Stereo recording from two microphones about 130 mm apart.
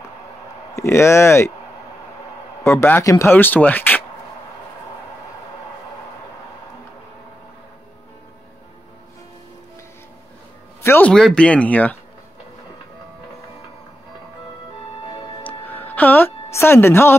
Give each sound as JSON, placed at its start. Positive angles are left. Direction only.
{"t": 0.7, "sound": "speech", "side_deg": 20}
{"t": 2.6, "sound": "speech", "side_deg": 20}
{"t": 10.8, "sound": "speech", "side_deg": 15}
{"t": 15.4, "sound": "music", "side_deg": 15}